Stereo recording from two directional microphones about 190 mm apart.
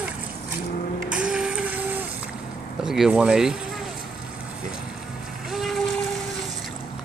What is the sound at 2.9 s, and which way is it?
Speech, 5° right (ahead or behind).